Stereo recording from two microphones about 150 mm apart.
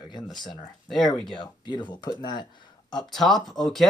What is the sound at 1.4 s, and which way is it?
Speech, 30° left (ahead or behind).